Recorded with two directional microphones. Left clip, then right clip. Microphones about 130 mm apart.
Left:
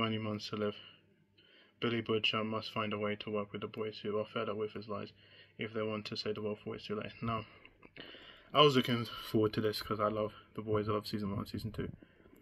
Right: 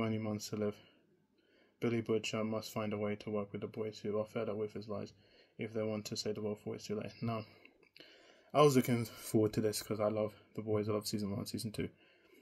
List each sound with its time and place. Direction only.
0.0 s speech: 25° right (ahead or behind)